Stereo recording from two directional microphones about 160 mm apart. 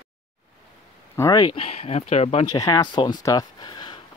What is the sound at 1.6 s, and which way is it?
Speech, 40° left (ahead or behind).